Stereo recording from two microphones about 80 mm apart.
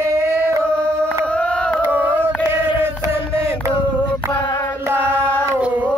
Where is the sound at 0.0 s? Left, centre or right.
Right.